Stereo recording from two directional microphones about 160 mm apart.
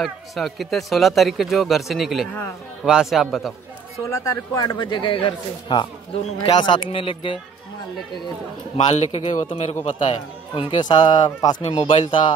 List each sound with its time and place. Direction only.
0.0 s speech: centre (ahead or behind)
4.0 s speech: 20° left (ahead or behind); by 7.3 s 35° left (ahead or behind)
8.7 s speech: 40° left (ahead or behind)